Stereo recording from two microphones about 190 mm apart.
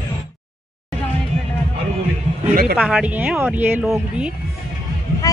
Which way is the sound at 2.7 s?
5° right (ahead or behind).